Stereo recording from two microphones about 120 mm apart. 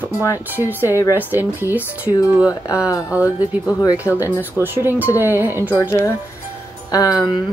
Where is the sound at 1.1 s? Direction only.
15° right (ahead or behind).